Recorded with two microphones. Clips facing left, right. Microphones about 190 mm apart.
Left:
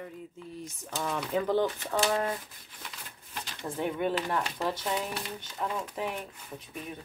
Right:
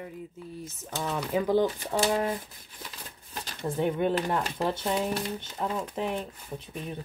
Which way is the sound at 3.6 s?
20° right (ahead or behind).